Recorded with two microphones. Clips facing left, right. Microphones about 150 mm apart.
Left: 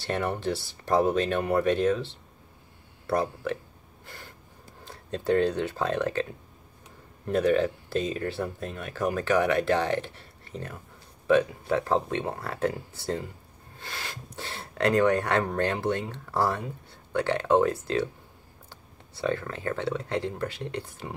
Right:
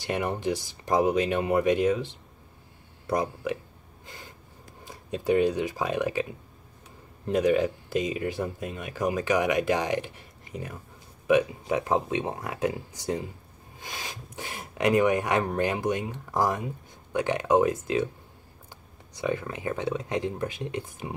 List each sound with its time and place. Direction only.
0.0 s speech: 15° right (ahead or behind)
4.0 s snort: 20° right (ahead or behind)
4.8 s speech: 15° right (ahead or behind)
7.2 s speech: 15° right (ahead or behind)
19.1 s speech: 15° right (ahead or behind)